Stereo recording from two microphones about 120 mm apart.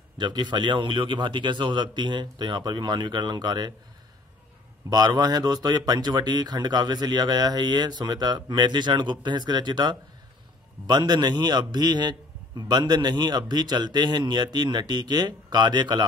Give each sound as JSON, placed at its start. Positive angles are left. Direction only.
{"t": 0.2, "sound": "a man's voice", "side_deg": -40}
{"t": 4.8, "sound": "a man's voice", "side_deg": -35}